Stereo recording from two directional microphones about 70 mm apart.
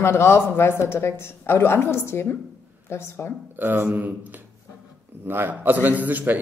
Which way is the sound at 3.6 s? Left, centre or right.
Right.